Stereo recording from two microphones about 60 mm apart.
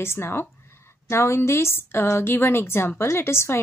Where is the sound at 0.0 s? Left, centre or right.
Left.